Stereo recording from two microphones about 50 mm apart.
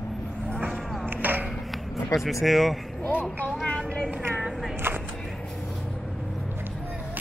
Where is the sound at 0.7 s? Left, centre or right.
Centre.